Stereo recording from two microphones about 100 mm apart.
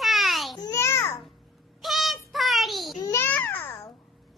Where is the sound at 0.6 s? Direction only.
30° left (ahead or behind).